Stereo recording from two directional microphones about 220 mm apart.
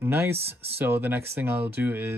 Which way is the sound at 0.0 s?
10° right (ahead or behind).